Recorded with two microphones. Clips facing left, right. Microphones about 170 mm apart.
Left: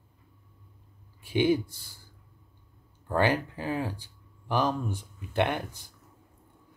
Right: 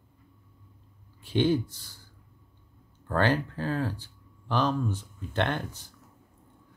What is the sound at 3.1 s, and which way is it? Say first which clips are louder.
Speech: even; 15° left (ahead or behind).